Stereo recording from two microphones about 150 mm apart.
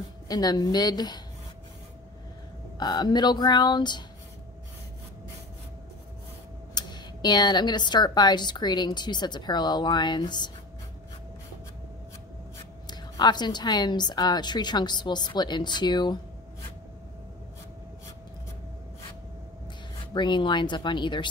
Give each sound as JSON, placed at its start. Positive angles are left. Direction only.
{"t": 0.3, "sound": "a woman's voice", "side_deg": 25}
{"t": 2.8, "sound": "a woman's voice", "side_deg": 30}
{"t": 6.7, "sound": "a woman's voice", "side_deg": 30}
{"t": 12.8, "sound": "a woman's voice", "side_deg": 30}
{"t": 20.2, "sound": "speech", "side_deg": 30}